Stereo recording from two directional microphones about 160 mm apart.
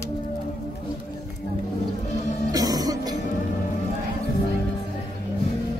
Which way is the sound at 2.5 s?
25° right (ahead or behind).